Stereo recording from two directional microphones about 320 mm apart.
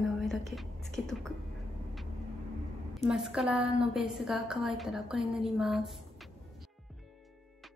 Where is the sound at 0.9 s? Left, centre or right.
Centre.